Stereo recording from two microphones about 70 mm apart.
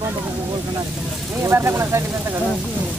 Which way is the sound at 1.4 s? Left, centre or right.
Right.